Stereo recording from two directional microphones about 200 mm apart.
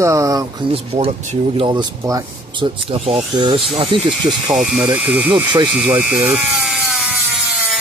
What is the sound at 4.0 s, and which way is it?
Speech, centre (ahead or behind).